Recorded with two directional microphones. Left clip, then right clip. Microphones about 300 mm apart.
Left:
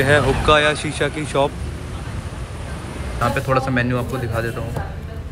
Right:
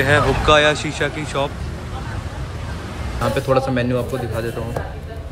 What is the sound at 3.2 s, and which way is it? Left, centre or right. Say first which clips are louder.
Speech: right 1 dB; centre.